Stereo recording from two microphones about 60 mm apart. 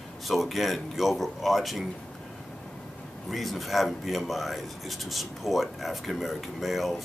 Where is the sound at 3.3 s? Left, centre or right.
Centre.